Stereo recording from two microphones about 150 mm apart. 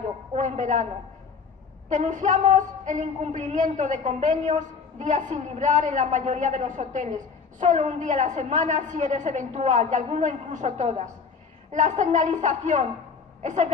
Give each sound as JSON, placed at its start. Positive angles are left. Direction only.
{"t": 0.4, "sound": "a woman's voice", "side_deg": -55}
{"t": 1.9, "sound": "a woman's voice", "side_deg": -55}